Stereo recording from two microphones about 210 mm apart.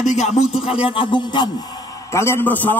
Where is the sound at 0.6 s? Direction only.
25° left (ahead or behind).